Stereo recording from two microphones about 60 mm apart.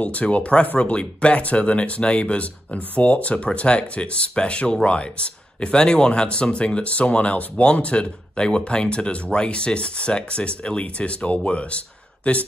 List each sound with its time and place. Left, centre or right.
0.0 s speech: left